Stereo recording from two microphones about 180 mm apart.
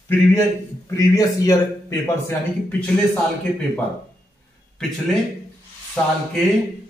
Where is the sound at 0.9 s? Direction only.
20° left (ahead or behind).